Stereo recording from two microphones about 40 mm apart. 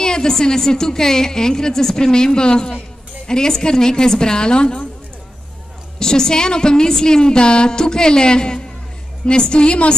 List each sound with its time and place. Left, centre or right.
0.0 s a woman's voice: centre
5.9 s a woman's voice: centre